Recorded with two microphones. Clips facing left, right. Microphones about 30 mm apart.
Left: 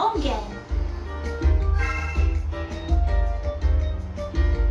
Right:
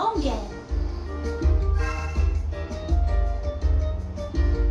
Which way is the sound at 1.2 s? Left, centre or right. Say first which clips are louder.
Even; left.